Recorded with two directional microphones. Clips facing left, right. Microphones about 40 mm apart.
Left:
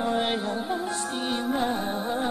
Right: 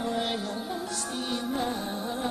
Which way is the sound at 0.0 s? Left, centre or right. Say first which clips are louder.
Left 4 dB; left.